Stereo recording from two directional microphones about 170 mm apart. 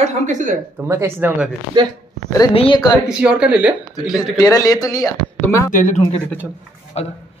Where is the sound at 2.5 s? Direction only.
30° left (ahead or behind).